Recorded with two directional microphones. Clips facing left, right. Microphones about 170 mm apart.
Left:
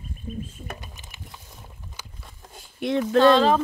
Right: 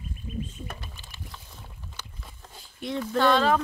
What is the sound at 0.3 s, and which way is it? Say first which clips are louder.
Bird: left 2 dB; 35° left (ahead or behind).